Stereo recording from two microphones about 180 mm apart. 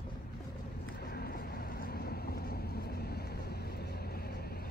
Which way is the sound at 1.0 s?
60° left (ahead or behind).